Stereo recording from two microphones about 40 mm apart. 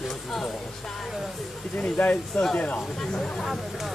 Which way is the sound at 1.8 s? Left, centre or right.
Left.